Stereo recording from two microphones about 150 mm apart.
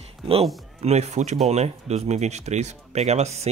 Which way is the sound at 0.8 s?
45° right (ahead or behind).